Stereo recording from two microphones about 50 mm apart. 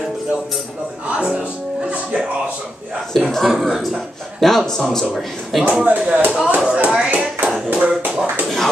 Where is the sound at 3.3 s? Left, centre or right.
Centre.